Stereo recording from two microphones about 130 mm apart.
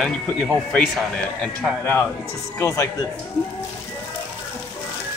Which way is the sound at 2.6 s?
20° left (ahead or behind).